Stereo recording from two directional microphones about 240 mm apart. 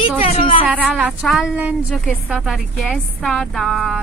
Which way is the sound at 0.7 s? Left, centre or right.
Centre.